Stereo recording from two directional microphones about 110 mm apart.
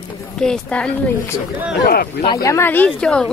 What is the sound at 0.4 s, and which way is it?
Speech, 10° left (ahead or behind).